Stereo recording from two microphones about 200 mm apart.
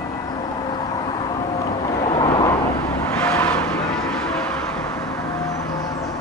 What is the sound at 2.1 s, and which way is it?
Vehicle, 25° left (ahead or behind).